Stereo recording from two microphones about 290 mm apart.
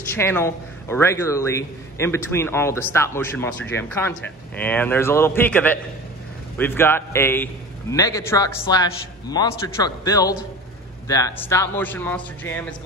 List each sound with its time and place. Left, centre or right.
0.1 s a man's voice: centre